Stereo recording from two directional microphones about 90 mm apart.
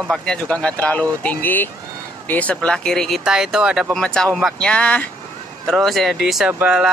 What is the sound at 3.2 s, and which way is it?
Speech, 5° right (ahead or behind).